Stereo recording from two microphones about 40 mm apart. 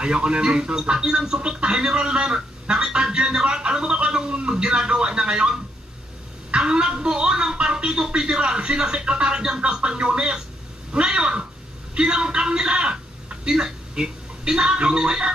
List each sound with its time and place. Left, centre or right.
0.0 s speech: right
11.9 s a sound: right
14.4 s speech: right